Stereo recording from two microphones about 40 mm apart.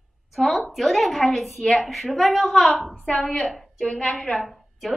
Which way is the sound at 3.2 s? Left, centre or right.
Left.